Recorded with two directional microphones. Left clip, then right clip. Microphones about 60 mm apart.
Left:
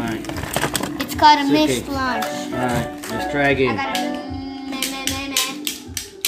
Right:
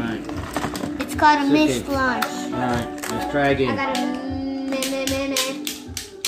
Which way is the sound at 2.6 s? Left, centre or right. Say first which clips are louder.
Left 1 dB; left.